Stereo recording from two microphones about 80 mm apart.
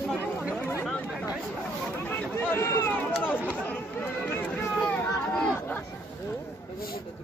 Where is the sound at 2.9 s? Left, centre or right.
Centre.